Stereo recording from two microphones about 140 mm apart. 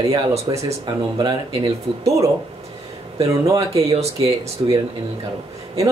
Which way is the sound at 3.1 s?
25° right (ahead or behind).